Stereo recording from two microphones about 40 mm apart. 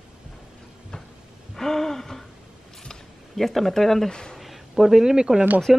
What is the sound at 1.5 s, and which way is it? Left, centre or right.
Gasp, centre.